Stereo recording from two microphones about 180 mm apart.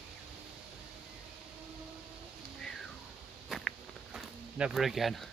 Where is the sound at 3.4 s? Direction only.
Centre (ahead or behind).